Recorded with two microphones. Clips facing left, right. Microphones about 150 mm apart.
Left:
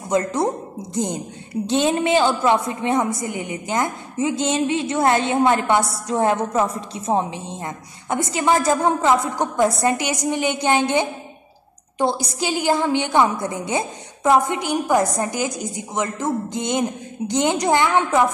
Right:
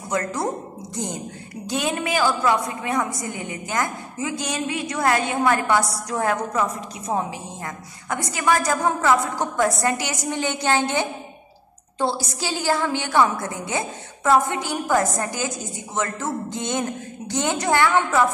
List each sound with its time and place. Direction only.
0.1 s a woman's voice: 20° left (ahead or behind)